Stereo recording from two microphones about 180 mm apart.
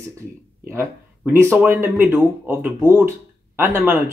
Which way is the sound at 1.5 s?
15° right (ahead or behind).